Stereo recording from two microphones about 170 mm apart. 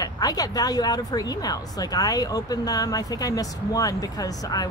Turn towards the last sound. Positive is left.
turn(degrees=20)  # may be behind; listen again after turning